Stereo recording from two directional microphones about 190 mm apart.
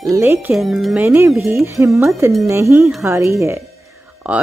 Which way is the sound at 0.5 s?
Centre (ahead or behind).